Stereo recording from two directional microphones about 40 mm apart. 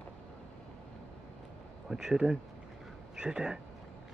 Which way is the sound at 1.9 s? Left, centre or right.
Centre.